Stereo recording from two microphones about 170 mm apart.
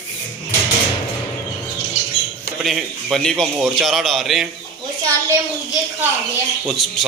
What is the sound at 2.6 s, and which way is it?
A man's voice, centre (ahead or behind).